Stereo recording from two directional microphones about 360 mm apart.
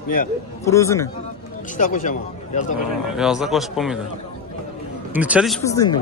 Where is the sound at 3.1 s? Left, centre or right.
Centre.